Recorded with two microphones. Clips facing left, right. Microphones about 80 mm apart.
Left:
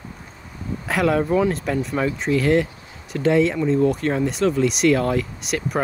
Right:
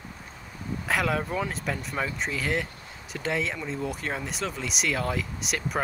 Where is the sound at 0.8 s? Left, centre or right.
Centre.